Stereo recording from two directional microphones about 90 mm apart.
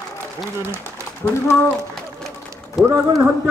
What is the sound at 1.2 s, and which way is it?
Speech, 25° left (ahead or behind).